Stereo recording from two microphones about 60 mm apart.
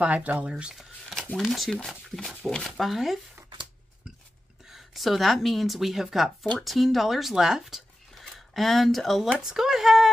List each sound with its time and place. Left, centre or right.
0.0 s speech: right
1.3 s speech: centre
4.6 s speech: centre